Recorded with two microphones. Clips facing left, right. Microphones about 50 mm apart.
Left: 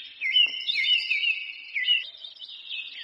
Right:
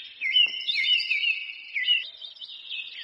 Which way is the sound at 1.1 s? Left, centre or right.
Centre.